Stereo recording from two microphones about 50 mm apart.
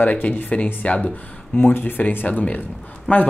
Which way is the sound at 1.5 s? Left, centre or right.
Left.